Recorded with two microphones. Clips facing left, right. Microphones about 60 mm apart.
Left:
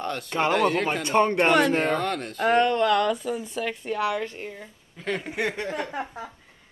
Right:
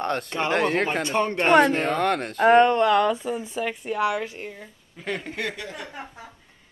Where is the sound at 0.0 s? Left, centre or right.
Right.